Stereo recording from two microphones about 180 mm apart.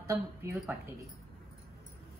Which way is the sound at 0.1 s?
15° right (ahead or behind).